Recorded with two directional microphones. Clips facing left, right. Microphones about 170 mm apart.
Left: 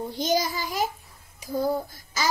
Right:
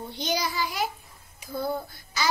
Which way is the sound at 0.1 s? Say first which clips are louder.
Left 3 dB; 45° left (ahead or behind).